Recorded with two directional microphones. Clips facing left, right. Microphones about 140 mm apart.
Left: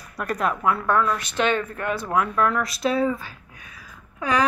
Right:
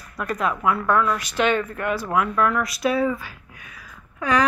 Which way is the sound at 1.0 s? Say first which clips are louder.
Right 1 dB; 10° right (ahead or behind).